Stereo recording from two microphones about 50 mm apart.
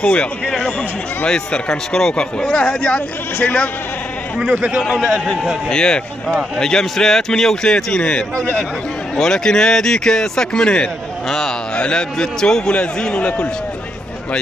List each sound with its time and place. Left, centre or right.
0.0 s a man's voice: left
4.8 s a man's voice: centre
5.7 s a man's voice: centre